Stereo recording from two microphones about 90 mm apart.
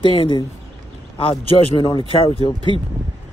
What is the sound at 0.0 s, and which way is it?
Speech, 80° left.